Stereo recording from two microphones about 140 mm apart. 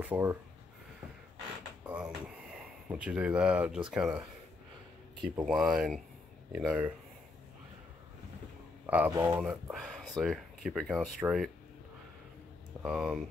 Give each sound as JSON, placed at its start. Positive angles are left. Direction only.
{"t": 0.0, "sound": "speech", "side_deg": -15}
{"t": 1.9, "sound": "speech", "side_deg": -5}
{"t": 5.5, "sound": "speech", "side_deg": -5}
{"t": 8.8, "sound": "a sound", "side_deg": -10}
{"t": 9.1, "sound": "speech", "side_deg": -15}
{"t": 9.5, "sound": "speech", "side_deg": -5}
{"t": 12.8, "sound": "speech", "side_deg": -5}